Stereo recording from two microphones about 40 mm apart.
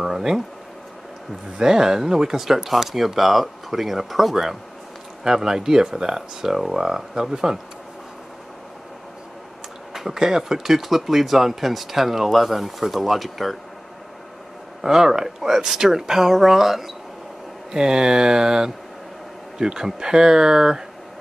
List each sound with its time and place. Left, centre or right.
0.0 s a sound: centre
1.6 s speech: centre
9.9 s speech: centre
14.8 s speech: centre